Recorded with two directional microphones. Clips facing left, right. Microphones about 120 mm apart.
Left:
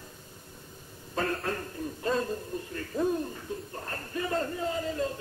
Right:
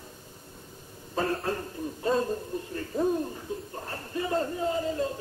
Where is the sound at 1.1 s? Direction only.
25° right (ahead or behind).